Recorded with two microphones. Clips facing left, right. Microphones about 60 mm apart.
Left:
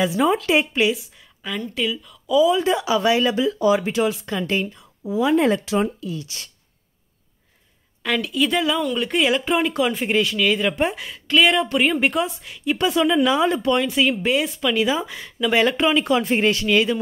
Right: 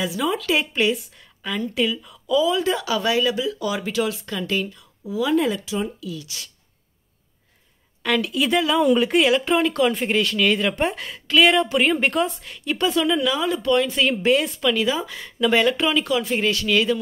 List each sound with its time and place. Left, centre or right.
0.0 s speech: left
0.7 s speech: centre
2.3 s speech: centre; by 6.5 s left
8.0 s speech: centre
9.3 s speech: centre
12.7 s speech: centre
13.3 s speech: left
13.6 s speech: centre
13.9 s speech: centre
14.8 s speech: centre
15.2 s speech: centre
15.5 s speech: centre